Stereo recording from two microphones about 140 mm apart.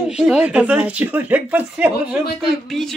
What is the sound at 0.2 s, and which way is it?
Speech, 5° right (ahead or behind).